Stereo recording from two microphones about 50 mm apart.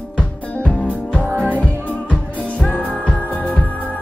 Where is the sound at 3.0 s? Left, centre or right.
Left.